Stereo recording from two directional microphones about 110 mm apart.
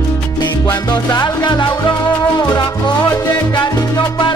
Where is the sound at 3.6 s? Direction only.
45° left (ahead or behind).